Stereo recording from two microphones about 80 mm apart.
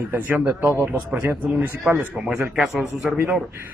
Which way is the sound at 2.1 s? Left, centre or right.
Centre.